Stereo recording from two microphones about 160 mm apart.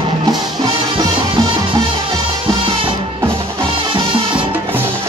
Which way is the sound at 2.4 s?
30° right (ahead or behind).